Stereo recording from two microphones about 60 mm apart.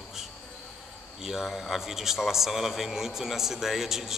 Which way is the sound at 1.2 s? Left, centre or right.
Centre.